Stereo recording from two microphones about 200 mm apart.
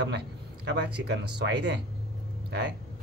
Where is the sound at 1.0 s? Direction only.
60° right (ahead or behind).